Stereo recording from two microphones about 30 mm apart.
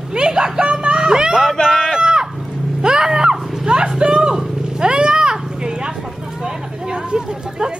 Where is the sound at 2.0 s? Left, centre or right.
Right.